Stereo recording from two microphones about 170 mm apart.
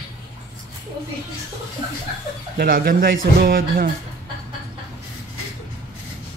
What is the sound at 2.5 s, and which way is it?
Speech, 60° right (ahead or behind).